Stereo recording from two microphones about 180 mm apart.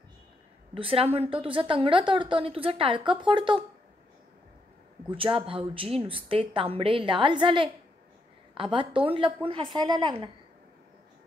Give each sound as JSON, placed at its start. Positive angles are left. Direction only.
{"t": 0.7, "sound": "a woman's voice", "side_deg": -30}
{"t": 5.1, "sound": "a woman's voice", "side_deg": -30}